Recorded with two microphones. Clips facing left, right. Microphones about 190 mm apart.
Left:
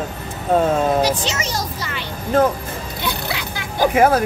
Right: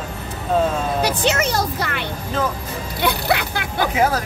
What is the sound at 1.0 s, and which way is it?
Music, 60° right (ahead or behind).